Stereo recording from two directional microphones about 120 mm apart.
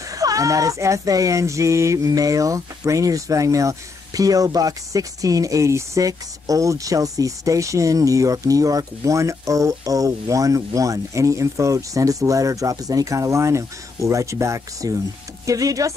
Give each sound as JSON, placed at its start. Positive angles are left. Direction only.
{"t": 0.1, "sound": "speech", "side_deg": -30}